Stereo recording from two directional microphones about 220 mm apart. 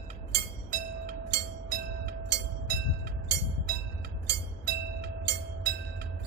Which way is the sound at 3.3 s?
50° right (ahead or behind).